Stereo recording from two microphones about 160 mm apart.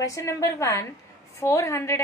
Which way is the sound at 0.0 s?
20° left (ahead or behind).